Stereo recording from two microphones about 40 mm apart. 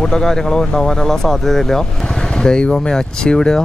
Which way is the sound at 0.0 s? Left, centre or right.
Centre.